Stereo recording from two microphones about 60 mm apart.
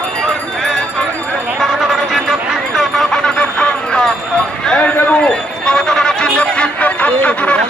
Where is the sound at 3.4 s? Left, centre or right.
Centre.